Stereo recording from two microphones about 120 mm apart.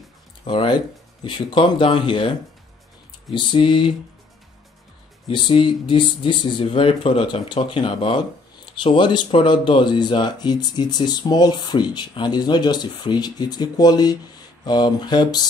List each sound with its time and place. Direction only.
0.5 s speech: 40° left (ahead or behind)
3.3 s speech: 45° left (ahead or behind)
5.3 s speech: 45° left (ahead or behind)